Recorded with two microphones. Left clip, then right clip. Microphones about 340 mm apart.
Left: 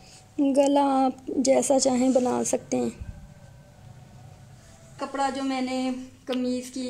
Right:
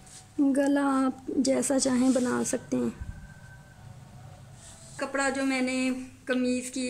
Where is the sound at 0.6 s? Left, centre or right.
Centre.